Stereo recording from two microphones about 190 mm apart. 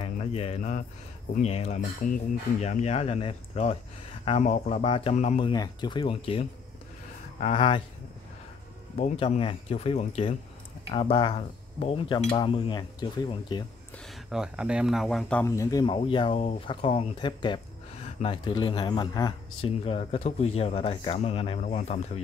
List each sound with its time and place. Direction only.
0.0 s speech: 30° left (ahead or behind)
5.5 s speech: 20° left (ahead or behind)
8.9 s speech: 35° left (ahead or behind)
13.9 s speech: centre (ahead or behind)
15.4 s speech: 15° left (ahead or behind)
19.8 s speech: 35° left (ahead or behind)
21.6 s speech: 40° left (ahead or behind)